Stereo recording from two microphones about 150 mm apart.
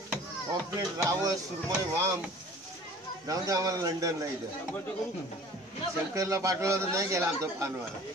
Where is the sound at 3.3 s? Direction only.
25° right (ahead or behind).